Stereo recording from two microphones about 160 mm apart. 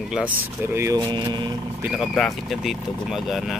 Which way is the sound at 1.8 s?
Centre (ahead or behind).